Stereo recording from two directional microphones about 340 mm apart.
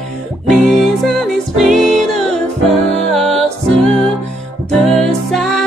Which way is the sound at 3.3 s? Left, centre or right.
Centre.